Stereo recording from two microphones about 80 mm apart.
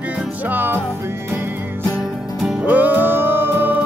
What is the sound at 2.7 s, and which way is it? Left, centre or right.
Music, right.